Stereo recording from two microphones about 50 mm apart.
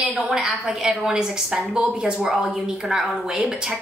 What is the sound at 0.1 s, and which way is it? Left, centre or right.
A woman's voice, centre.